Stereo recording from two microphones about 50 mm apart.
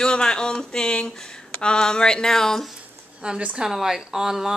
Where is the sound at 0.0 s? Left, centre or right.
Centre.